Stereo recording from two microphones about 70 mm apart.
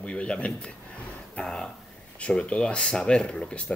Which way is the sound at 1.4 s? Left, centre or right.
Centre.